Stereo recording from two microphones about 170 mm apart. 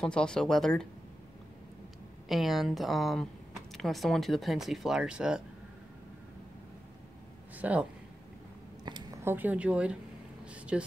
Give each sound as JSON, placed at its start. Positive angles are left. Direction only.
{"t": 0.0, "sound": "speech", "side_deg": 5}
{"t": 2.2, "sound": "speech", "side_deg": 0}
{"t": 7.5, "sound": "speech", "side_deg": -10}
{"t": 8.8, "sound": "a sound", "side_deg": -25}
{"t": 9.2, "sound": "speech", "side_deg": -10}
{"t": 10.4, "sound": "a sound", "side_deg": -5}